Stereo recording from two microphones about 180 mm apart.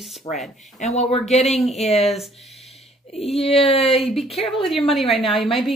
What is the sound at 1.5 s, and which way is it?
Speech, centre (ahead or behind).